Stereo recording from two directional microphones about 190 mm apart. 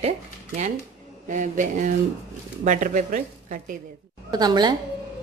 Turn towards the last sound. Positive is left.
turn(degrees=-20)  # may be behind; listen again after turning